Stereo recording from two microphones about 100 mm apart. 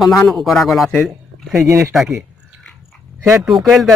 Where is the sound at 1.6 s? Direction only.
30° right (ahead or behind).